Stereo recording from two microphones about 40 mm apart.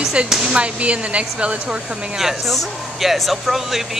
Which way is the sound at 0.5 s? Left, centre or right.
Right.